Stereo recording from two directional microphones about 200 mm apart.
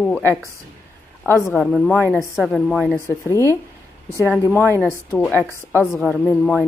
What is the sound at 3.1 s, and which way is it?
Speech, 15° left (ahead or behind).